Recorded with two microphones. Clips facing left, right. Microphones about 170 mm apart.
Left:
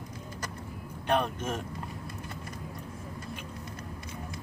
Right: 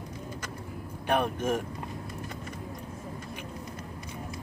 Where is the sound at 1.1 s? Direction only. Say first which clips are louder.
Right 2 dB; 10° right (ahead or behind).